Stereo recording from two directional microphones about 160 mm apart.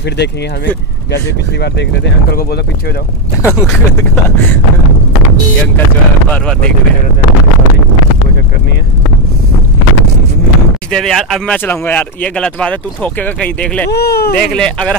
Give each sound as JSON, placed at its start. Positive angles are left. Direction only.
{"t": 3.4, "sound": "speech", "side_deg": 15}
{"t": 6.2, "sound": "speech", "side_deg": 10}
{"t": 10.9, "sound": "speech", "side_deg": 0}
{"t": 13.8, "sound": "speech", "side_deg": 85}
{"t": 14.5, "sound": "speech", "side_deg": 5}